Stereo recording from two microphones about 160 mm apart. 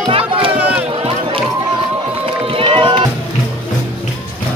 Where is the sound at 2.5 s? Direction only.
35° right (ahead or behind).